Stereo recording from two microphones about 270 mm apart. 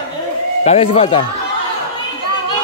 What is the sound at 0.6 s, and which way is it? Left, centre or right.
Speech, left.